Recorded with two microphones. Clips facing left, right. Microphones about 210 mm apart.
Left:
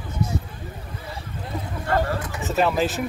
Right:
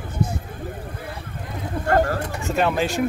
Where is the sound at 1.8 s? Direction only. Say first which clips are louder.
Right 4 dB; 45° right (ahead or behind).